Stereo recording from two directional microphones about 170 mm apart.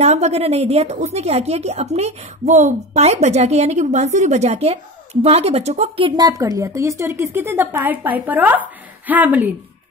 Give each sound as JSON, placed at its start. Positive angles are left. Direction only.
{"t": 0.0, "sound": "a woman's voice", "side_deg": -40}